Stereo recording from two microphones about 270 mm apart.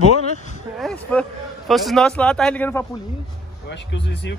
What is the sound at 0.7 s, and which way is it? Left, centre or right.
Speech, centre.